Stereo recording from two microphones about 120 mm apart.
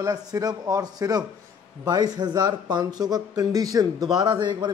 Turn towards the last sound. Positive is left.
turn(degrees=-40)  # may be behind; listen again after turning